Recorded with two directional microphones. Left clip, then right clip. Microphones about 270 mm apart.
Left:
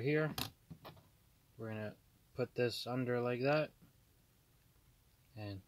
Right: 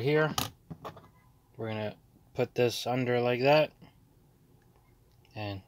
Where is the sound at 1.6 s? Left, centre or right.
Centre.